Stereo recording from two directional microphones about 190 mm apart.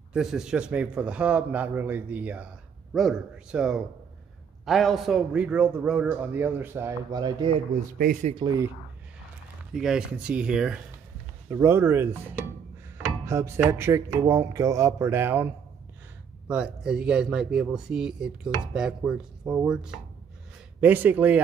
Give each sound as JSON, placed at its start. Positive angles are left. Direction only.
{"t": 0.1, "sound": "a man's voice", "side_deg": -5}
{"t": 8.0, "sound": "speech", "side_deg": -45}
{"t": 8.4, "sound": "a man's voice", "side_deg": -20}
{"t": 9.8, "sound": "a man's voice", "side_deg": -5}